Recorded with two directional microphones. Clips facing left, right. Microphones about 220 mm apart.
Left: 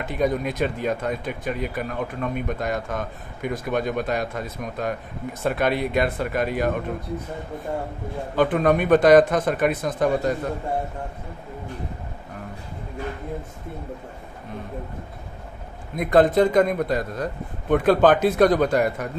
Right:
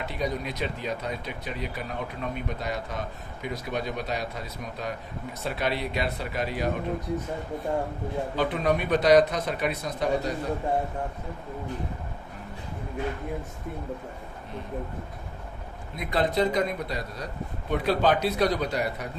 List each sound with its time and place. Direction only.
0.0 s speech: 50° left (ahead or behind)
8.4 s speech: 50° left (ahead or behind)
16.0 s speech: 50° left (ahead or behind)